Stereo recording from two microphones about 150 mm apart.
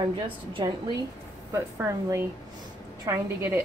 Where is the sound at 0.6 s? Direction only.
30° right (ahead or behind).